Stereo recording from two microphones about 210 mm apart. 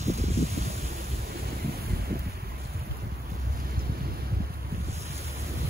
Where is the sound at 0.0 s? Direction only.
30° right (ahead or behind).